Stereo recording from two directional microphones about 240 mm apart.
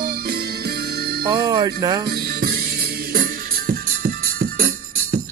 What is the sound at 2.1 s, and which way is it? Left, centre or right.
Music, right.